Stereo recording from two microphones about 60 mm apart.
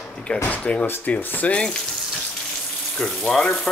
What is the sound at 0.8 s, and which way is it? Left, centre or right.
Speech, left.